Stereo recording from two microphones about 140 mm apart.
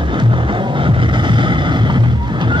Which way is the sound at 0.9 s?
35° right (ahead or behind).